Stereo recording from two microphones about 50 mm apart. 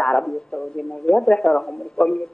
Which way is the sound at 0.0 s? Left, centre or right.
Centre.